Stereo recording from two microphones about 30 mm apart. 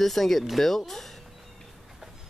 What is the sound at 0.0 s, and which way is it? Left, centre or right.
Speech, centre.